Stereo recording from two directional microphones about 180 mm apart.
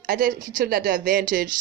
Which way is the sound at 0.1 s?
50° right (ahead or behind).